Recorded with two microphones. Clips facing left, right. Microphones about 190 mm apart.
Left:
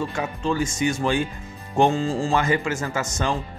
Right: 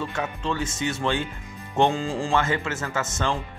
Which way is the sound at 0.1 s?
5° left (ahead or behind).